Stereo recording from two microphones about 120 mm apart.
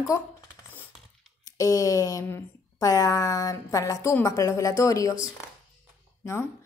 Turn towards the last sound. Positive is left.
turn(degrees=20)  # may be behind; listen again after turning